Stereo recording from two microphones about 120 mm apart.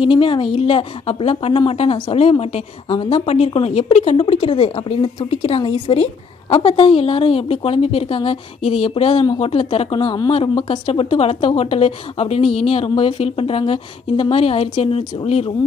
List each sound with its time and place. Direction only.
0.0 s a woman's voice: 45° left (ahead or behind)
3.3 s a woman's voice: 60° left (ahead or behind)